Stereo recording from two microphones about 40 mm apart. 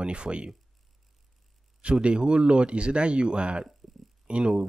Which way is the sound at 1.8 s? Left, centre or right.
Right.